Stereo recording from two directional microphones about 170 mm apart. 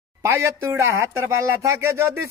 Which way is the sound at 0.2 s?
15° right (ahead or behind).